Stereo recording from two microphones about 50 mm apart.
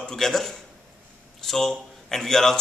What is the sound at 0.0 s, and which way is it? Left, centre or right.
A man's voice, centre.